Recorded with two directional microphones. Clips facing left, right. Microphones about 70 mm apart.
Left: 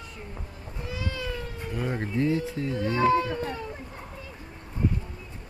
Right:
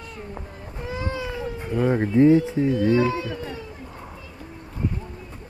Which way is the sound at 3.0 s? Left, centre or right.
Left.